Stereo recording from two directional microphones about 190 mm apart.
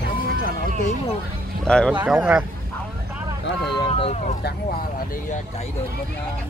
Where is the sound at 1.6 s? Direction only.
5° left (ahead or behind).